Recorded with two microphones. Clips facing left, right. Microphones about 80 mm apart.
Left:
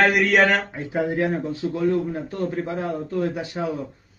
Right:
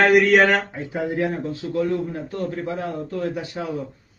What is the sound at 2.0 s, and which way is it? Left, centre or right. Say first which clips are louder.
A man's voice: left 1 dB; centre.